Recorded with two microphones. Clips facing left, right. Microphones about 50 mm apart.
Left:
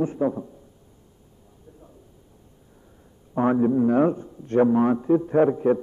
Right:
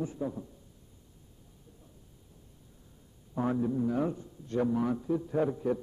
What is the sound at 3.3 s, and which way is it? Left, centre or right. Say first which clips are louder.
A man's voice: left 10 dB; left.